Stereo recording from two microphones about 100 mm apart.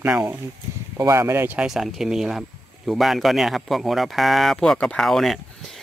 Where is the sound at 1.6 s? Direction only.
5° right (ahead or behind).